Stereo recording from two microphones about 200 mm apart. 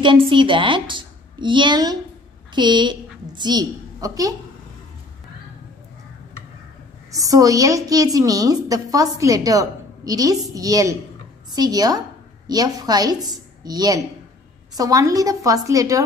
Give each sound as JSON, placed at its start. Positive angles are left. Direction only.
{"t": 0.3, "sound": "a woman's voice", "side_deg": -25}
{"t": 7.2, "sound": "a woman's voice", "side_deg": -15}